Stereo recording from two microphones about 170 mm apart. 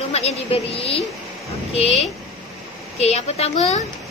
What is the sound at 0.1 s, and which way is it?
A woman's voice, 40° left (ahead or behind).